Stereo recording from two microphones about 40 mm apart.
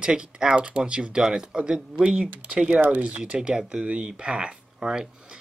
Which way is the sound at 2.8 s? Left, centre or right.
Right.